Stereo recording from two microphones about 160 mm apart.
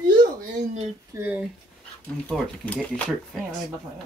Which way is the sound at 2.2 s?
10° left (ahead or behind).